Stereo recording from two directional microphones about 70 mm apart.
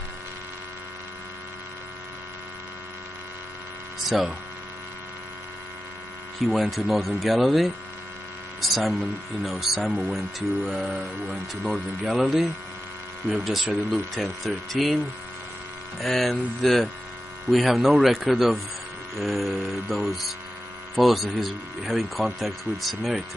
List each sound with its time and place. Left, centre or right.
6.4 s speech: centre
8.5 s hum: centre
9.4 s speech: centre
16.0 s speech: centre